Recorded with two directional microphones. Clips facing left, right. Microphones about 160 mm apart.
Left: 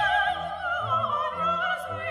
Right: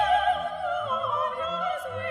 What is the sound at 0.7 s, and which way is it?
Opera, 30° right (ahead or behind).